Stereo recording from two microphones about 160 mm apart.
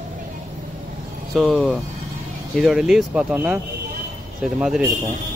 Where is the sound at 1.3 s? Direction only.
Centre (ahead or behind).